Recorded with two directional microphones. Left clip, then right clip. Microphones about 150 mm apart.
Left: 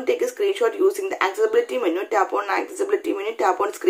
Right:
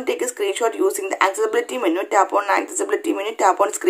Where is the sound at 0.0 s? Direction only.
35° right (ahead or behind).